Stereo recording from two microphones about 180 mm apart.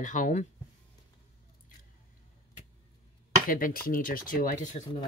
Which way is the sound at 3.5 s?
55° left (ahead or behind).